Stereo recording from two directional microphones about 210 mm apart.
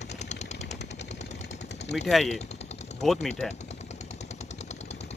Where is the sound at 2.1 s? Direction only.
Centre (ahead or behind).